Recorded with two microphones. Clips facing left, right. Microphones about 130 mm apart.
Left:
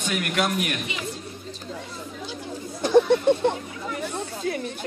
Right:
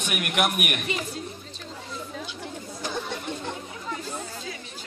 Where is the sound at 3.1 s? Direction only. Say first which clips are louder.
Left 13 dB; 60° left (ahead or behind).